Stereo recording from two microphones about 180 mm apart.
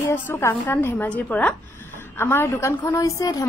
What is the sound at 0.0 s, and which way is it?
A woman's voice, 15° left (ahead or behind).